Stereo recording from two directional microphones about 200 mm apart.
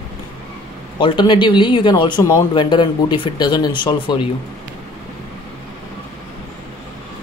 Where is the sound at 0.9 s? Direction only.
25° left (ahead or behind).